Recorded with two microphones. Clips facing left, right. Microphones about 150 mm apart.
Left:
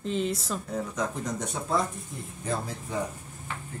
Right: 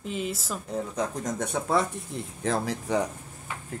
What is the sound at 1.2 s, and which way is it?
Speech, 55° right (ahead or behind).